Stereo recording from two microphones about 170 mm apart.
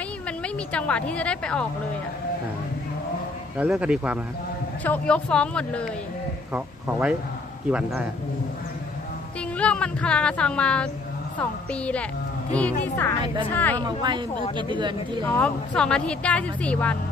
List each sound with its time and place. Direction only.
0.7 s speech: 5° left (ahead or behind)
3.5 s speech: 10° right (ahead or behind)
4.8 s speech: 10° left (ahead or behind)
6.5 s speech: 5° right (ahead or behind)
9.6 s speech: 5° left (ahead or behind)
13.2 s speech: 25° right (ahead or behind)
13.5 s speech: 10° left (ahead or behind)
13.7 s speech: 25° right (ahead or behind)
15.2 s speech: 10° left (ahead or behind)